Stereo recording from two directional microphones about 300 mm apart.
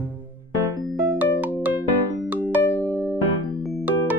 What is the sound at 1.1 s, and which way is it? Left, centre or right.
Music, centre.